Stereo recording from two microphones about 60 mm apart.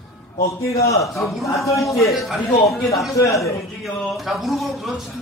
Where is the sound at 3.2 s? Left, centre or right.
Left.